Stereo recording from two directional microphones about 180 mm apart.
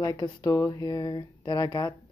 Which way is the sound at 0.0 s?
20° left (ahead or behind).